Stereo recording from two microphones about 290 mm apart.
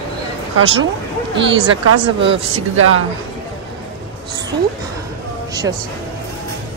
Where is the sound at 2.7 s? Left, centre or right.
Right.